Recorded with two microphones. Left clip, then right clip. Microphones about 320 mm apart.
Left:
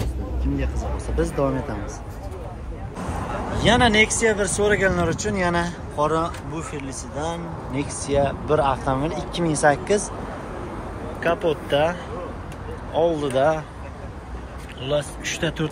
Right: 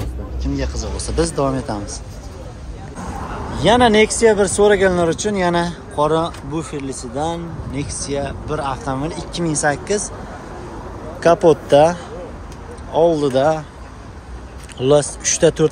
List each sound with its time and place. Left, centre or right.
0.0 s speech: centre
3.5 s speech: centre
11.2 s speech: centre
14.8 s speech: centre